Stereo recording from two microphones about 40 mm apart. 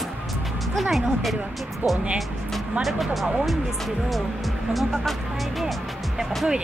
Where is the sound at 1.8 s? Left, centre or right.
Right.